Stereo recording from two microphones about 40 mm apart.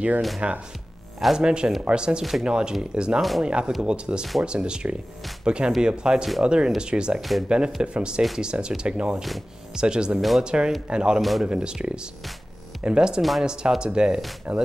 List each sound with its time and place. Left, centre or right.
0.4 s speech: right
3.2 s speech: centre
3.4 s speech: right
7.2 s speech: centre
7.4 s speech: right
11.1 s speech: centre
11.4 s speech: right